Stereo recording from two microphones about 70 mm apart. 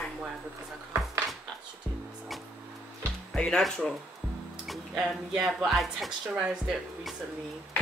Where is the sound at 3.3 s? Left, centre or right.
Centre.